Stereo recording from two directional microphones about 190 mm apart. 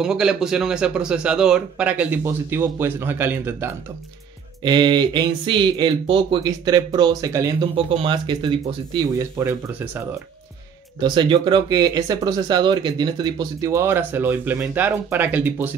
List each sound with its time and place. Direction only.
0.0 s a man's voice: 5° right (ahead or behind)
4.6 s speech: 25° right (ahead or behind)
9.2 s speech: 10° right (ahead or behind)
11.0 s speech: 25° right (ahead or behind)